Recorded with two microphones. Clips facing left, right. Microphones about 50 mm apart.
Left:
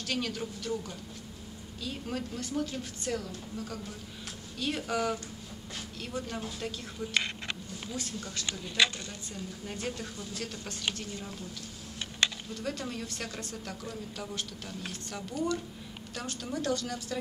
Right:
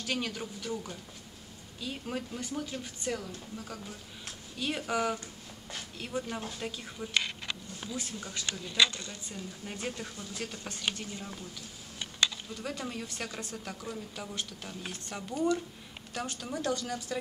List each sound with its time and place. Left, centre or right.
0.0 s speech: centre
12.5 s speech: centre